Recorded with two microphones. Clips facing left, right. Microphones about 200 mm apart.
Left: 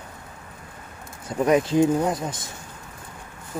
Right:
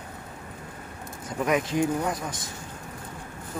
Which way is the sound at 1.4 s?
30° left (ahead or behind).